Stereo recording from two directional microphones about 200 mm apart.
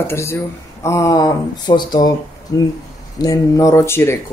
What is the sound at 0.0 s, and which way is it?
Speech, 10° left (ahead or behind).